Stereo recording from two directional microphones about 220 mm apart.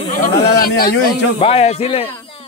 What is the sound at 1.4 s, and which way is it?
Speech, 25° left (ahead or behind).